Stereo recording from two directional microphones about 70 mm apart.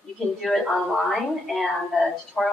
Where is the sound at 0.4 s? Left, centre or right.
Centre.